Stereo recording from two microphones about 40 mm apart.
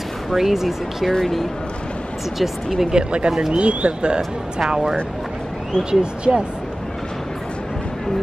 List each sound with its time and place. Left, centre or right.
0.3 s speech: centre
1.1 s speech: centre
2.9 s speech: right
3.5 s speech: right
4.6 s speech: centre